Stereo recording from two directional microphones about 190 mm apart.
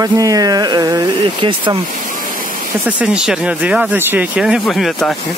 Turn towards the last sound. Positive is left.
turn(degrees=0)  # may be behind; listen again after turning